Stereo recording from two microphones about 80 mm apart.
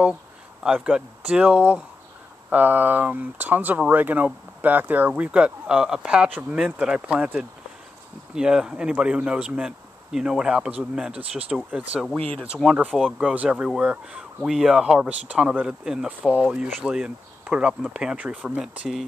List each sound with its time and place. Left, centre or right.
0.7 s speech: centre
8.4 s speech: centre
12.6 s speech: centre
13.2 s speech: centre
16.1 s speech: centre